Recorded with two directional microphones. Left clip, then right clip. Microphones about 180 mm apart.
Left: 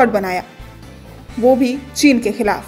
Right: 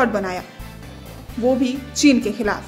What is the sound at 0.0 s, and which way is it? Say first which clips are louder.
A woman's voice: left 6 dB; 20° left (ahead or behind).